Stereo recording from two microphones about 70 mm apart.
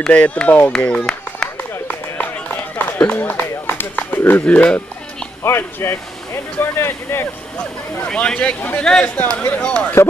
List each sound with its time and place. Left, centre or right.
0.1 s speech: centre
0.7 s a sound: centre
1.9 s run: left
4.5 s speech: left
5.4 s speech: left
8.0 s speech: centre
8.8 s speech: centre
9.1 s speech: left